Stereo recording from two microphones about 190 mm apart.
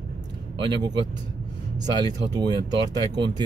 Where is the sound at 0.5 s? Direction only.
25° right (ahead or behind).